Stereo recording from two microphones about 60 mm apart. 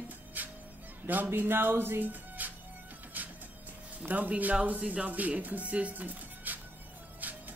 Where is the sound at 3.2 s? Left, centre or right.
Right.